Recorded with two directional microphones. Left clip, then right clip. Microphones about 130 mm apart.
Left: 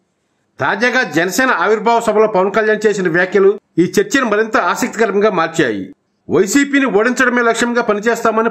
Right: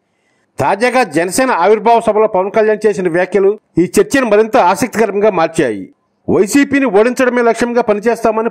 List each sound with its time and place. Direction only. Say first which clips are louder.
0.6 s a man's voice: right 3 dB; 50° right (ahead or behind)